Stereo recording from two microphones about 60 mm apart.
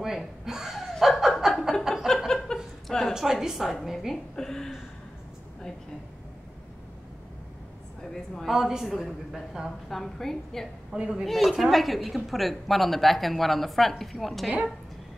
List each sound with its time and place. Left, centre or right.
0.0 s chuckle: centre
2.0 s a sound: centre
3.8 s a woman's voice: centre
4.1 s a woman's voice: centre
8.5 s speech: centre
9.8 s a woman's voice: centre
10.9 s a woman's voice: centre
11.2 s speech: centre